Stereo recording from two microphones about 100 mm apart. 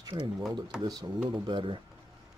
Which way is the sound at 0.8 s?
40° right (ahead or behind).